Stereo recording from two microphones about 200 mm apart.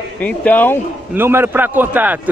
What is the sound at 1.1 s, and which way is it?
A man's voice, 10° right (ahead or behind).